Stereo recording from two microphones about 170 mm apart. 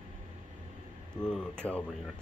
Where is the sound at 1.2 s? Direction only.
5° left (ahead or behind).